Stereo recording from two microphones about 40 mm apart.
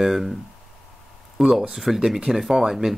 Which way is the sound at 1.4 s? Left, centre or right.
Centre.